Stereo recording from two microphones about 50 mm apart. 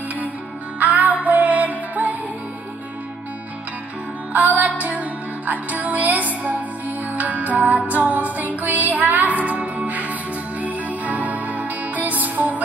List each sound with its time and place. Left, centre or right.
0.7 s music: right
4.3 s music: right